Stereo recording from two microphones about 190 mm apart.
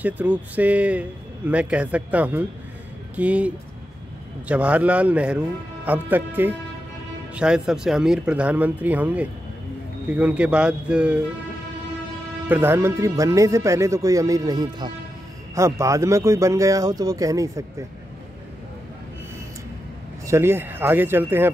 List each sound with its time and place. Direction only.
0.0 s a man's voice: 10° right (ahead or behind)
12.4 s a man's voice: 10° right (ahead or behind)
20.2 s a man's voice: 15° right (ahead or behind)